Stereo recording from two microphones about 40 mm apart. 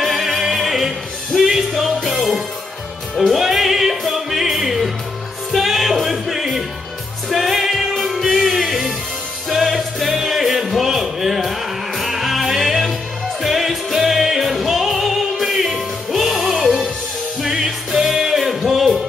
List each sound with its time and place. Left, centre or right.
0.0 s music: centre
3.2 s music: centre